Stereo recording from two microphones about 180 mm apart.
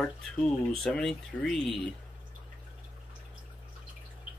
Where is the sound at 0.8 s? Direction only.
5° left (ahead or behind).